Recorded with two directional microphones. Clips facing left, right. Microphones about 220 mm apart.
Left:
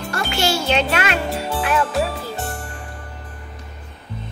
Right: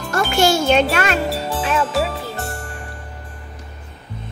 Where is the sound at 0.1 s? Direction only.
50° right (ahead or behind).